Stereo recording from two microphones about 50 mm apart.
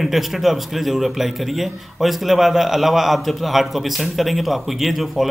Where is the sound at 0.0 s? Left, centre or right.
Centre.